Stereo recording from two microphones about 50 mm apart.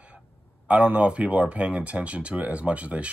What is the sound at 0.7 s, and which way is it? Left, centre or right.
Speech, right.